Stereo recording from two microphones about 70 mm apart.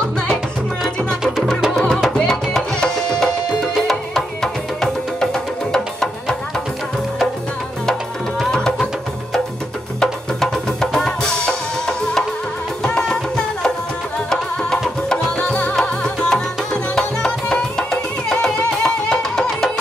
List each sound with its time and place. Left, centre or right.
1.2 s music: centre
8.5 s music: centre
10.4 s music: centre
12.8 s music: centre
15.4 s music: centre